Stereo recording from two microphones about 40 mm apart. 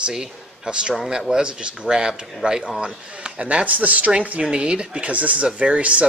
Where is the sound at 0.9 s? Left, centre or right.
Centre.